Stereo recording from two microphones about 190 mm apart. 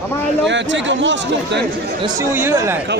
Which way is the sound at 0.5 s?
70° right (ahead or behind).